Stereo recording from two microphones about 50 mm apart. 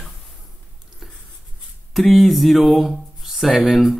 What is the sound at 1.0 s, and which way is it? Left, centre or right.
Writing, centre.